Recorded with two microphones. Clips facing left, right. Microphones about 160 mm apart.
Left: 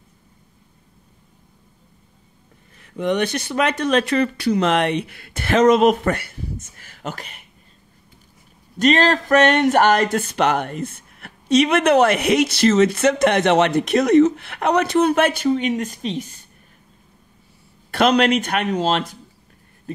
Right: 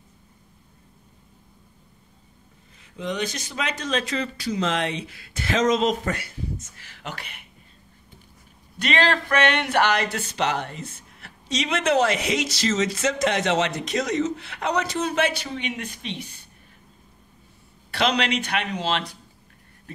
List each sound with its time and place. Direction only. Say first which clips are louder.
2.8 s speech: left 8 dB; 60° left (ahead or behind)
6.8 s speech: left 5 dB; 45° left (ahead or behind)
8.7 s speech: left 6 dB; 45° left (ahead or behind)
17.9 s speech: left 7 dB; 50° left (ahead or behind)